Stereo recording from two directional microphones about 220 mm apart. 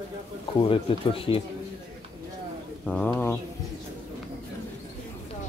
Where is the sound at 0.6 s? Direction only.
25° left (ahead or behind).